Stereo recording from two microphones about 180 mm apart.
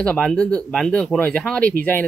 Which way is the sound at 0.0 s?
5° left (ahead or behind).